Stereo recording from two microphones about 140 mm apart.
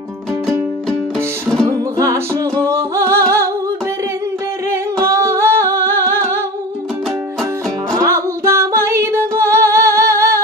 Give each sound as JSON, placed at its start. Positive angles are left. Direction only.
{"t": 2.6, "sound": "music", "side_deg": -20}
{"t": 5.0, "sound": "music", "side_deg": -20}
{"t": 7.9, "sound": "music", "side_deg": -20}